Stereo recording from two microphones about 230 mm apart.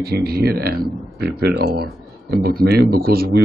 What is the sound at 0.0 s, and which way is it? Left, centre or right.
Speech, right.